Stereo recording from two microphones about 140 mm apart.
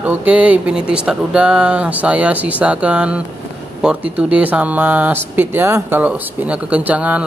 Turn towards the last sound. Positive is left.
turn(degrees=-10)  # may be behind; listen again after turning